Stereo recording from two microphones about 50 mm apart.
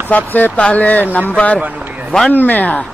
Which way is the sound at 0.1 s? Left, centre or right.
Left.